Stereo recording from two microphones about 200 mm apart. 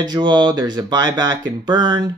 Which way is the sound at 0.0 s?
20° right (ahead or behind).